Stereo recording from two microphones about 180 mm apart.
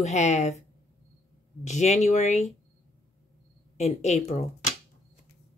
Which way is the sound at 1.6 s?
40° left (ahead or behind).